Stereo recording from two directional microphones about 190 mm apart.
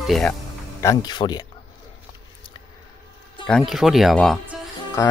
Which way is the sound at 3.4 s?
Centre (ahead or behind).